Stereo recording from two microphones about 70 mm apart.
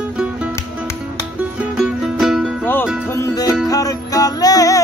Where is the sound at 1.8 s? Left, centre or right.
Centre.